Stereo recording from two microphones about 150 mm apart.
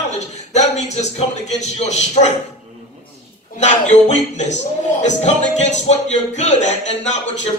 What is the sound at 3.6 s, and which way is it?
Speech, 50° left (ahead or behind).